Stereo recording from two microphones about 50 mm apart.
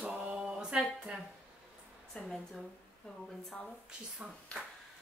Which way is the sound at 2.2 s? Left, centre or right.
Left.